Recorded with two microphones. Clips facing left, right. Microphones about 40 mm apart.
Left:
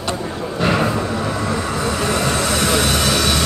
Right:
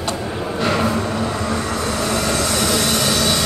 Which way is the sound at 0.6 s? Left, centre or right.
Centre.